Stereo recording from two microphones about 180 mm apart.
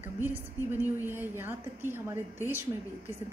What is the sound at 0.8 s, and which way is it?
A woman's voice, 10° right (ahead or behind).